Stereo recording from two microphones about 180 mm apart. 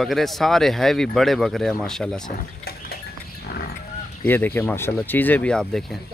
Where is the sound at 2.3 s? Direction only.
60° left (ahead or behind).